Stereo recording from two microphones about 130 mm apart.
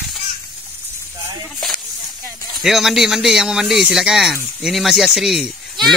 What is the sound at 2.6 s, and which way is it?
Speech, centre (ahead or behind).